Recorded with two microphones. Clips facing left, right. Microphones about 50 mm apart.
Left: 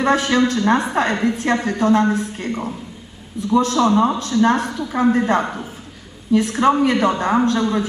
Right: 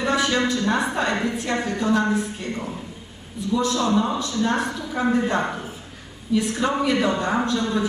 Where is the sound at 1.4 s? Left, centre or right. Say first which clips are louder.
Left 5 dB; left.